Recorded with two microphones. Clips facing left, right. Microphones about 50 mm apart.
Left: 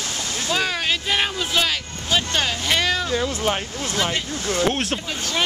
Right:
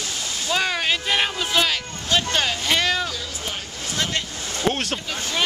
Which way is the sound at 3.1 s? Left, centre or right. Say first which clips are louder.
Left 9 dB; left.